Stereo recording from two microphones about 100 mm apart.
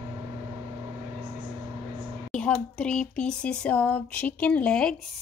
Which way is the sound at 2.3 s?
10° left (ahead or behind).